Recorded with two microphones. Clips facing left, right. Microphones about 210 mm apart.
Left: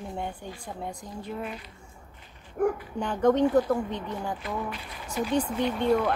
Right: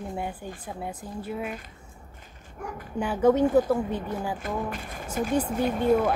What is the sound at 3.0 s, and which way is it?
A woman's voice, 5° right (ahead or behind).